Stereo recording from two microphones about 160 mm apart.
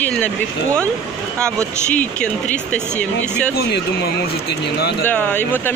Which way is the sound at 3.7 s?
90° left.